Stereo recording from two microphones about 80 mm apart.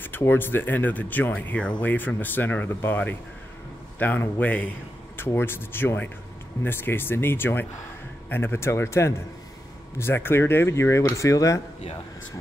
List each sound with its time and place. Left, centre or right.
0.0 s speech: left